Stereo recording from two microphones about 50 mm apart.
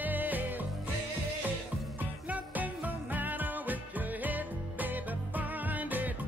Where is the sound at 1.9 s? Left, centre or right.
Right.